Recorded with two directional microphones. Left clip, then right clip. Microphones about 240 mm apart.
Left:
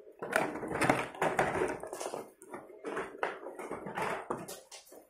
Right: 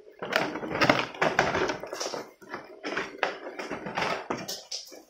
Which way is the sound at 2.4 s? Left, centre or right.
Right.